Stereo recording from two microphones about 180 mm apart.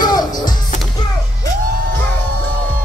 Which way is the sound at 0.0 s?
20° left (ahead or behind).